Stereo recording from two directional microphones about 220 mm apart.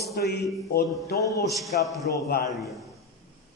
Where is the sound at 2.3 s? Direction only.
40° left (ahead or behind).